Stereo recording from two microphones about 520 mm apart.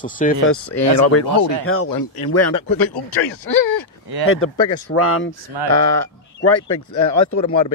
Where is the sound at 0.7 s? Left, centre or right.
Left.